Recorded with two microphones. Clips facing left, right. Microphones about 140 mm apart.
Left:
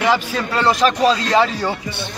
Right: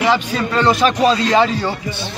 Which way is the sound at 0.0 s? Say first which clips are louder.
Right 1 dB; centre (ahead or behind).